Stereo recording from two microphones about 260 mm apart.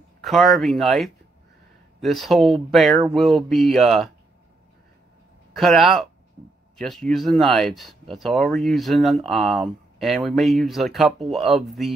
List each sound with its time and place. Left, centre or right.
0.2 s speech: centre
5.5 s speech: centre